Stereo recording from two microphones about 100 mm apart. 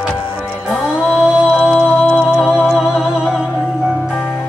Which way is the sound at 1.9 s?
10° left (ahead or behind).